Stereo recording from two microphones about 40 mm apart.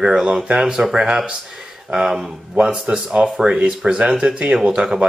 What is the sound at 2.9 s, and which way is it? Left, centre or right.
Speech, right.